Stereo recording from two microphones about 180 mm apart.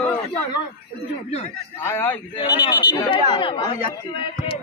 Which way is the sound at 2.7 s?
25° left (ahead or behind).